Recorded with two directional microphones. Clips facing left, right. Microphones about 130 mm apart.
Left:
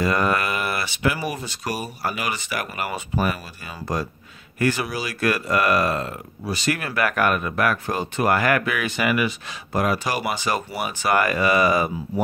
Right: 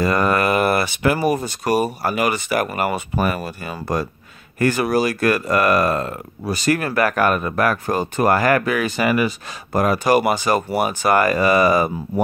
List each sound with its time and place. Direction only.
0.0 s speech: 45° right (ahead or behind)